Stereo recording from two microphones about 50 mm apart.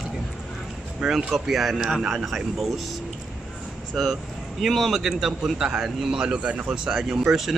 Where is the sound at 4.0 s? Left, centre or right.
Centre.